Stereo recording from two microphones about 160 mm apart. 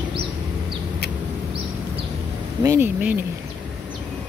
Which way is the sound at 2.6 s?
15° right (ahead or behind).